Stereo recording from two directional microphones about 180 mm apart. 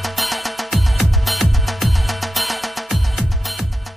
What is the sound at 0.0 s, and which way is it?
Music, centre (ahead or behind).